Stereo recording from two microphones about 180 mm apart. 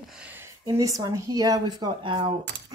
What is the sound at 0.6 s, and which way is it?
Speech, 20° right (ahead or behind).